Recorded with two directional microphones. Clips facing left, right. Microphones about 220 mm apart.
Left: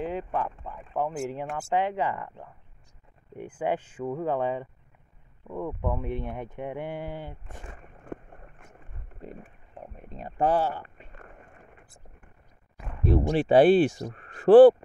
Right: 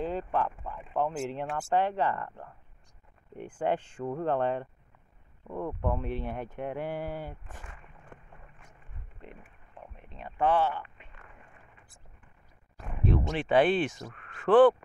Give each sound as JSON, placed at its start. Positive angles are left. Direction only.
{"t": 0.0, "sound": "speech", "side_deg": 10}
{"t": 7.6, "sound": "a sound", "side_deg": 40}
{"t": 13.3, "sound": "speech", "side_deg": 35}